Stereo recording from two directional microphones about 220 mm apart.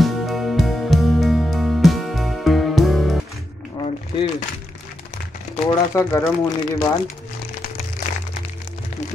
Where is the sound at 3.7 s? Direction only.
20° left (ahead or behind).